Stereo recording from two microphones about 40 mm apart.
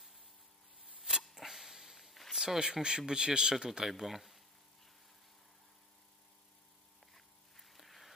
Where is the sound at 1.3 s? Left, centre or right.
Centre.